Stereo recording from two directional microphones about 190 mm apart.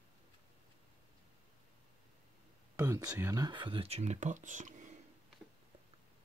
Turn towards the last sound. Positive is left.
turn(degrees=-40)  # may be behind; listen again after turning